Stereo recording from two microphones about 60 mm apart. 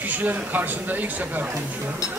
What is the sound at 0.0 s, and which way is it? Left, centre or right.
Speech, right.